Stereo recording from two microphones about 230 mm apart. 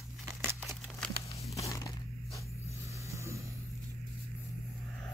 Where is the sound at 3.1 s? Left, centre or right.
Centre.